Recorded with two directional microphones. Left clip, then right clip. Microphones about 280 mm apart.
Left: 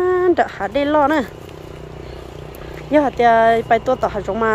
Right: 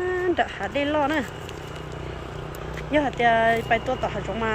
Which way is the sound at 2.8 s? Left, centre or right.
Centre.